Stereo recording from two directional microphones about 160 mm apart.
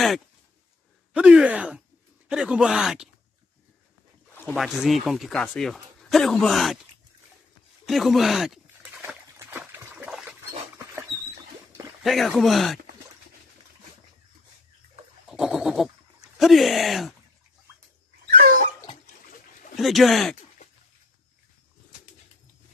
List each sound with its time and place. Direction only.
1.1 s speech: 5° right (ahead or behind)
4.6 s speech: centre (ahead or behind)
7.8 s speech: centre (ahead or behind)
9.4 s trickle: 15° right (ahead or behind)
12.0 s speech: centre (ahead or behind)
15.2 s goat: centre (ahead or behind)
16.3 s speech: centre (ahead or behind)
18.2 s dog: 60° right (ahead or behind)
19.8 s speech: centre (ahead or behind)